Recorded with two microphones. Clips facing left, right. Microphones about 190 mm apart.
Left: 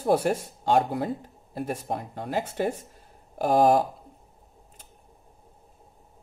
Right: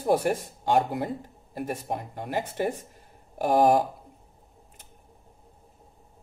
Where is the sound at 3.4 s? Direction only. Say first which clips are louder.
Left 1 dB; 15° right (ahead or behind).